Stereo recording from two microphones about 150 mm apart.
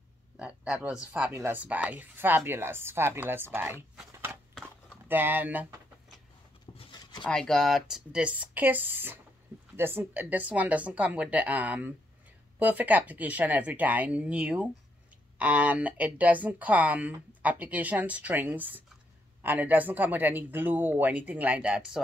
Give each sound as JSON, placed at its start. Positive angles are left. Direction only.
{"t": 0.4, "sound": "speech", "side_deg": -5}
{"t": 4.3, "sound": "typewriter", "side_deg": -10}
{"t": 6.8, "sound": "a sound", "side_deg": 30}
{"t": 7.2, "sound": "speech", "side_deg": 5}